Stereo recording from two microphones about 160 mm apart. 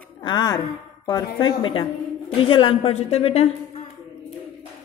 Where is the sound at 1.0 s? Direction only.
25° left (ahead or behind).